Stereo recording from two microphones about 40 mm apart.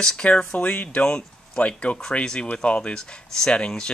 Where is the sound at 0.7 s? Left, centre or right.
Left.